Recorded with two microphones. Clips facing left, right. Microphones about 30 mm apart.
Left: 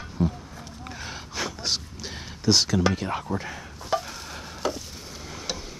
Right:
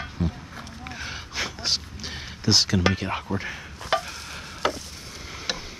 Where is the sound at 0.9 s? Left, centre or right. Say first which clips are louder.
Right 2 dB; centre.